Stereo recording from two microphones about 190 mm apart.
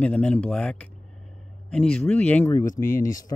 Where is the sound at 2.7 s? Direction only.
45° left (ahead or behind).